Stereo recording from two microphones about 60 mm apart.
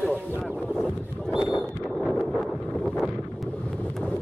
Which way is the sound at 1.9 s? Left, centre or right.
Centre.